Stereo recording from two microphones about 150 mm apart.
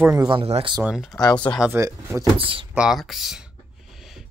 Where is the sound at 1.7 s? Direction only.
20° right (ahead or behind).